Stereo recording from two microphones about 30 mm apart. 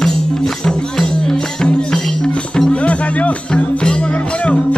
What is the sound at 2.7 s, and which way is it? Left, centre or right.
Music, left.